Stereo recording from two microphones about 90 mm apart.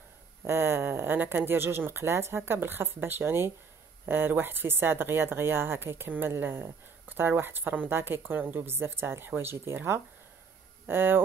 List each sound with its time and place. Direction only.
0.4 s speech: 30° right (ahead or behind)